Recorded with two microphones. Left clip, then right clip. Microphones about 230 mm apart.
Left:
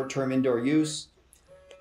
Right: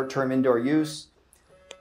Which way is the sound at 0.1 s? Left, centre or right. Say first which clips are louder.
Right 3 dB; centre.